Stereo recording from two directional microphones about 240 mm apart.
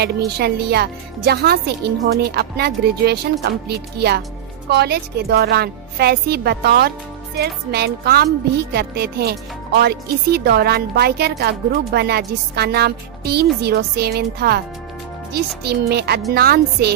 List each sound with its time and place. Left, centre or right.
0.4 s speech: right